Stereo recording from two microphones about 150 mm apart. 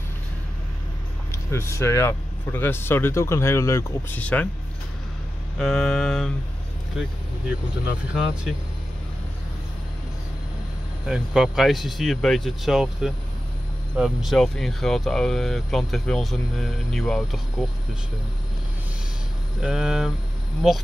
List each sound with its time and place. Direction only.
1.5 s speech: 20° left (ahead or behind)
5.6 s speech: centre (ahead or behind)
11.1 s speech: 5° right (ahead or behind)
19.6 s speech: 5° right (ahead or behind)